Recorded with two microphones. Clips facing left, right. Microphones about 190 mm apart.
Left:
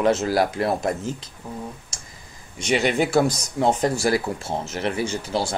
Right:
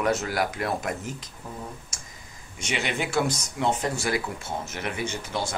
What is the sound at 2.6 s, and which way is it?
Speech, 35° left (ahead or behind).